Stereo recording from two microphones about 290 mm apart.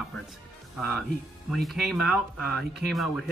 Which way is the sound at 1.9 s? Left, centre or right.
Left.